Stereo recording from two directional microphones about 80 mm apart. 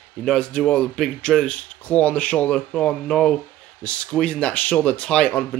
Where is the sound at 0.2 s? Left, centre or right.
Centre.